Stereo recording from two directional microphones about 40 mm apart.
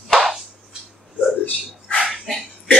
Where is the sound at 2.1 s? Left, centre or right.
Centre.